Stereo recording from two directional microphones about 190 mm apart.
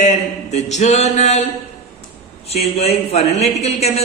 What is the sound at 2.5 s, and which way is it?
A man's voice, 30° left (ahead or behind).